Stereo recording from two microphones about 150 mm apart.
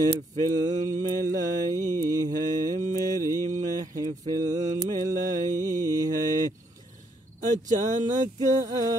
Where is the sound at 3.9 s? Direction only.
25° right (ahead or behind).